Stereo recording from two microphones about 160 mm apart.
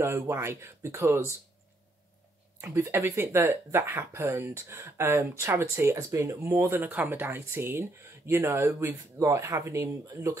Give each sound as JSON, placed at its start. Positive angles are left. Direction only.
{"t": 0.0, "sound": "speech", "side_deg": -15}
{"t": 2.6, "sound": "speech", "side_deg": -15}